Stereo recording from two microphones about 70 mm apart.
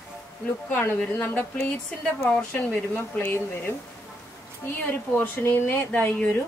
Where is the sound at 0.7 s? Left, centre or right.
Left.